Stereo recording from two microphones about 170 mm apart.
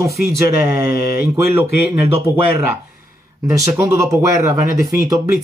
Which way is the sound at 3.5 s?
15° right (ahead or behind).